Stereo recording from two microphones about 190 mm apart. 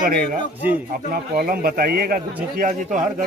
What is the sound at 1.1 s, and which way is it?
A man's voice, 50° right (ahead or behind).